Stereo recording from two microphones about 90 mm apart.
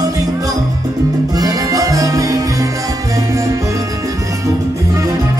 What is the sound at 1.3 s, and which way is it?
Music, 45° right (ahead or behind).